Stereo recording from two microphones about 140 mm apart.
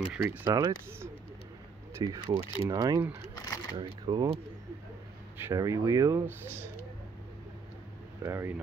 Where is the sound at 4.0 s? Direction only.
30° right (ahead or behind).